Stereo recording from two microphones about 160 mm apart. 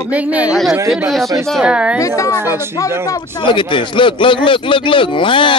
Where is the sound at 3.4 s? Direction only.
30° left (ahead or behind).